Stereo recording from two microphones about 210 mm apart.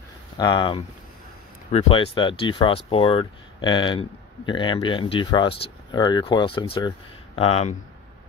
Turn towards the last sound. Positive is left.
turn(degrees=30)  # may be behind; listen again after turning